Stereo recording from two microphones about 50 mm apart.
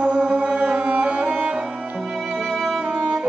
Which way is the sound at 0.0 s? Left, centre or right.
Right.